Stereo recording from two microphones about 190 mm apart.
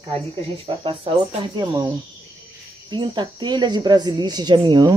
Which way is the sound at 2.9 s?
25° right (ahead or behind).